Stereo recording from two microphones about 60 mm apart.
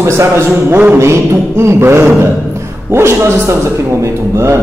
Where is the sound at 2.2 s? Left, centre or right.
Right.